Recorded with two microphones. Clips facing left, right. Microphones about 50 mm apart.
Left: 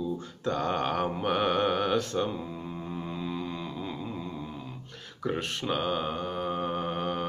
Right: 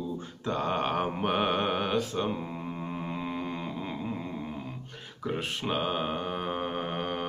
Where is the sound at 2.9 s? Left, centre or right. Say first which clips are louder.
Left 1 dB; right.